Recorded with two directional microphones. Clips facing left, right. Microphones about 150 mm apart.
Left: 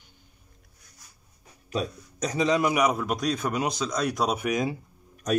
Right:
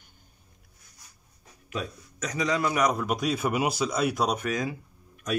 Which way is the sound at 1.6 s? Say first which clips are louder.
Left 4 dB; 35° left (ahead or behind).